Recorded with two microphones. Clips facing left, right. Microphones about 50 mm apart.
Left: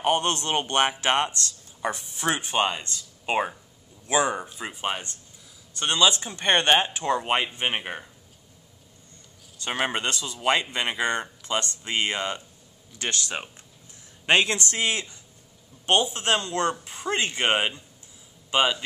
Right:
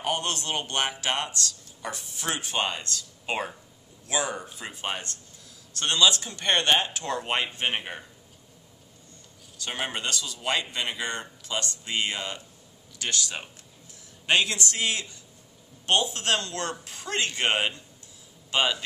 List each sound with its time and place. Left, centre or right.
0.0 s a man's voice: left
4.6 s a man's voice: centre
9.7 s a man's voice: left